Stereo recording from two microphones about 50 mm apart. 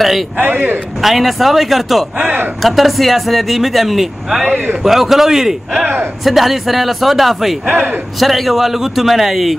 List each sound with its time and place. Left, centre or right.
0.4 s speech: right
1.0 s speech: centre
2.1 s speech: right
2.6 s speech: centre
4.5 s speech: right
4.8 s a man's voice: centre
7.7 s speech: right
8.2 s speech: centre